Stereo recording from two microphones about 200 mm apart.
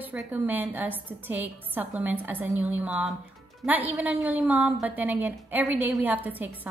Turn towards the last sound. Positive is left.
turn(degrees=-10)  # may be behind; listen again after turning